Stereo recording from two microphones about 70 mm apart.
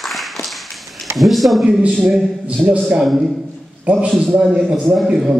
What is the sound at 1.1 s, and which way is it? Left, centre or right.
Speech, centre.